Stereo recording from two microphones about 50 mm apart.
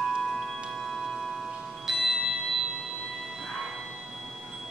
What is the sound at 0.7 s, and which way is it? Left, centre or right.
Tubular bells, centre.